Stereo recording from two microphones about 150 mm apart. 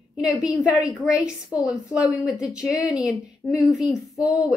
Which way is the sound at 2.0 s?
25° left (ahead or behind).